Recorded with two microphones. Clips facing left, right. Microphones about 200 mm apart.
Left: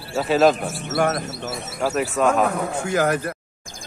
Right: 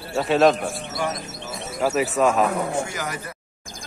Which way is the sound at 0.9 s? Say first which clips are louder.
Left 11 dB; 60° left (ahead or behind).